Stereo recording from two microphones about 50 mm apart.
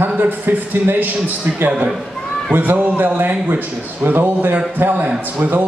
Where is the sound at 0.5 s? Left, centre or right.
Right.